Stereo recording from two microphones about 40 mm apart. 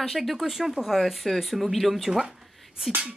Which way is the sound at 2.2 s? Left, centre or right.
Centre.